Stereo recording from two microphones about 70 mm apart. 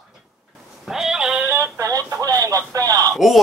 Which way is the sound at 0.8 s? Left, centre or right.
Centre.